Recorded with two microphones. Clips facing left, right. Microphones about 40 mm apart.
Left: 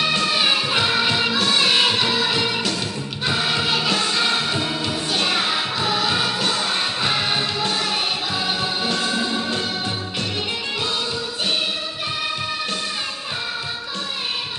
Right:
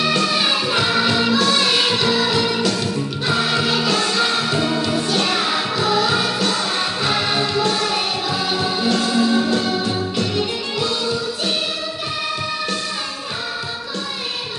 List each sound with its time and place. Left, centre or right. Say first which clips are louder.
0.0 s music: right 1 dB; left